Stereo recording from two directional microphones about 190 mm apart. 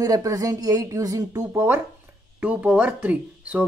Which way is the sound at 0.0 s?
20° right (ahead or behind).